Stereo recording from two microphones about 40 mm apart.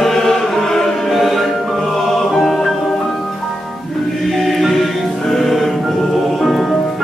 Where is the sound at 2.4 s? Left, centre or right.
Centre.